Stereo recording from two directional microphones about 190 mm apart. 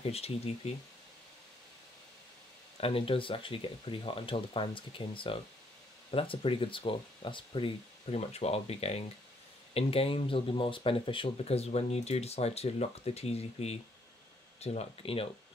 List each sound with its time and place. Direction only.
0.0 s speech: 30° left (ahead or behind)
2.8 s speech: 30° left (ahead or behind)